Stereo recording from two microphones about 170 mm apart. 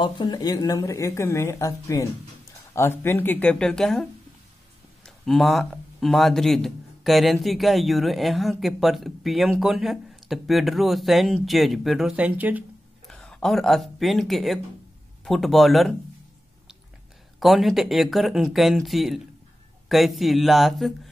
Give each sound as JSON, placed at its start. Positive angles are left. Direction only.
{"t": 0.0, "sound": "a woman's voice", "side_deg": 25}
{"t": 13.1, "sound": "speech", "side_deg": 5}
{"t": 17.4, "sound": "speech", "side_deg": 0}